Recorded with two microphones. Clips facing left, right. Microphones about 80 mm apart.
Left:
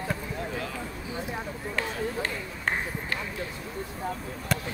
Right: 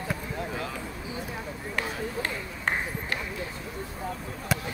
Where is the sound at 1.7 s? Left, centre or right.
Centre.